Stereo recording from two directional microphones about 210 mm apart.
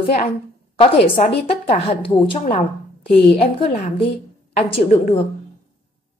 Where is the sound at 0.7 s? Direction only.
25° left (ahead or behind).